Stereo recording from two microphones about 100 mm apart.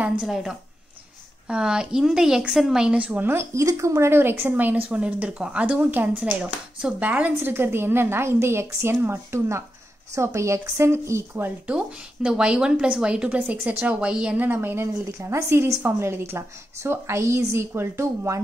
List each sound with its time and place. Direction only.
0.0 s a woman's voice: 5° right (ahead or behind); by 11.7 s 20° right (ahead or behind)
11.7 s a woman's voice: 10° right (ahead or behind); by 18.4 s 30° right (ahead or behind)